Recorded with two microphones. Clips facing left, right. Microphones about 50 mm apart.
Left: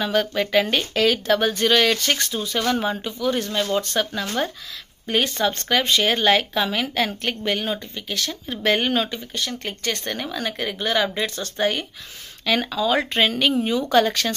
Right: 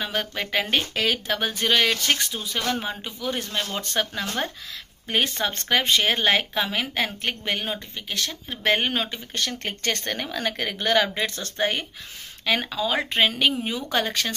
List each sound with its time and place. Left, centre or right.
0.0 s speech: centre
3.0 s speech: centre
9.3 s speech: right
12.4 s speech: centre